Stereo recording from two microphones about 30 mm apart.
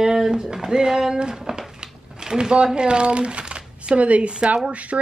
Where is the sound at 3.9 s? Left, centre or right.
Right.